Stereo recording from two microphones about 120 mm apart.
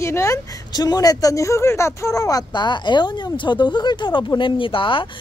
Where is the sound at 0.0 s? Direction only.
25° left (ahead or behind).